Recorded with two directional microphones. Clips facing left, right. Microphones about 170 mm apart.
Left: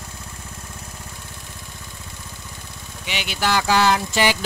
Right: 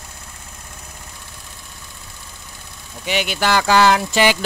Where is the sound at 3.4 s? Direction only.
70° right (ahead or behind); by 4.3 s 90° right.